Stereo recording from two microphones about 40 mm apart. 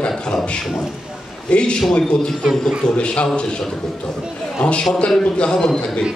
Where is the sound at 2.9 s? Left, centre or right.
Left.